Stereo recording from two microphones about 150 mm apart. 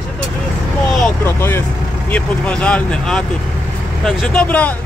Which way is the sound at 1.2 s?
15° left (ahead or behind).